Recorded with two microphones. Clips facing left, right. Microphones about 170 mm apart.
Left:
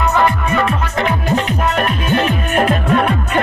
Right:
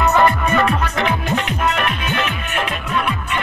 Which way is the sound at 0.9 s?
35° left (ahead or behind).